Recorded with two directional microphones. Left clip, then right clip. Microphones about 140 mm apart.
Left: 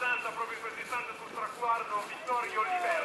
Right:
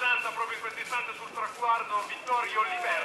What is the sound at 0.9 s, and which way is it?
Speech, 25° right (ahead or behind).